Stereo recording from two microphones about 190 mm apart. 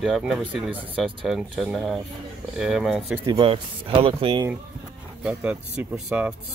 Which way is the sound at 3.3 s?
25° right (ahead or behind).